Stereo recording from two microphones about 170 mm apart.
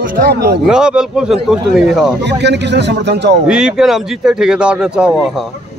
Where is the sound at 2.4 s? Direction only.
85° right.